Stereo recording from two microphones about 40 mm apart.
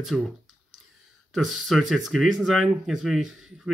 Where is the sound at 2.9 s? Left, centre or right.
Centre.